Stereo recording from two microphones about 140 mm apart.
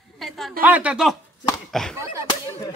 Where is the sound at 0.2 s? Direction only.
Centre (ahead or behind).